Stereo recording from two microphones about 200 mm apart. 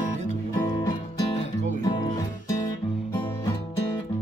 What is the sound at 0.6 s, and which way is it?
Music, 15° left (ahead or behind).